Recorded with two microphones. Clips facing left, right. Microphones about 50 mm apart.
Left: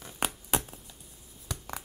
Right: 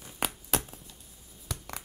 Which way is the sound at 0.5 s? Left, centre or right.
Centre.